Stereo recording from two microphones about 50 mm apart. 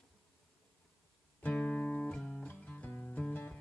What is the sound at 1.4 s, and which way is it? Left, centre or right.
Music, left.